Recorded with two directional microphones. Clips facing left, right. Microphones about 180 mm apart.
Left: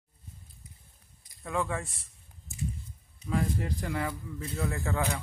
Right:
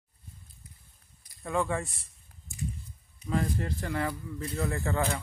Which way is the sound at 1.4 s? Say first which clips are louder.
Right 2 dB; centre (ahead or behind).